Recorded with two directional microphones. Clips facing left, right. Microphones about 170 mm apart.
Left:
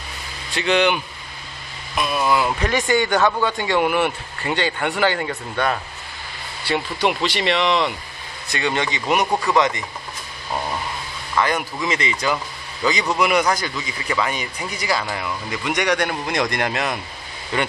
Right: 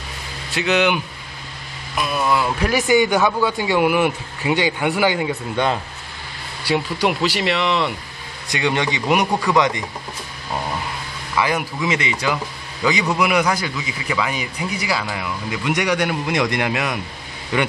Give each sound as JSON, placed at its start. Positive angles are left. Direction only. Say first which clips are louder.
{"t": 0.6, "sound": "a man's voice", "louder": "even", "side_deg": -10}
{"t": 6.7, "sound": "a man's voice", "louder": "right 2 dB", "side_deg": -10}
{"t": 11.3, "sound": "a man's voice", "louder": "even", "side_deg": -10}